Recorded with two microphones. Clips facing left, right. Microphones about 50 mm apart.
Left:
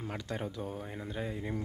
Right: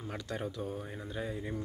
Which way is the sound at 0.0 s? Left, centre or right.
Left.